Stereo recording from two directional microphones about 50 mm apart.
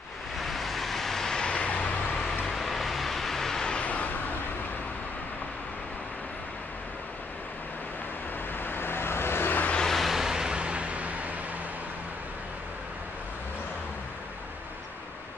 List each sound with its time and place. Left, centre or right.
0.4 s vehicle: centre; by 2.2 s left
2.4 s vehicle: centre
3.8 s vehicle: left
8.6 s vehicle: left
9.8 s a sound: centre; by 11.3 s right